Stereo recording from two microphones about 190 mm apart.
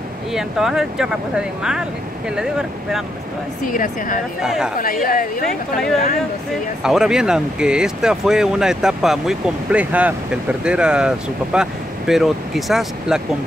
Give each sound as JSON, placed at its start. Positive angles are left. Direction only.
{"t": 0.3, "sound": "speech", "side_deg": 0}
{"t": 3.6, "sound": "a woman's voice", "side_deg": 45}
{"t": 4.4, "sound": "speech", "side_deg": -5}
{"t": 5.0, "sound": "a woman's voice", "side_deg": 45}
{"t": 5.5, "sound": "speech", "side_deg": 5}